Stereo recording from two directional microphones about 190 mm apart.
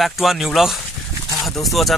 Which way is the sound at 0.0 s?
Centre (ahead or behind).